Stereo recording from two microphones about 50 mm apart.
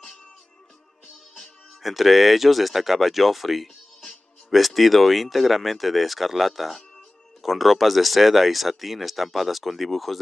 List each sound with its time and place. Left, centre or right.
1.0 s music: centre
1.8 s speech: centre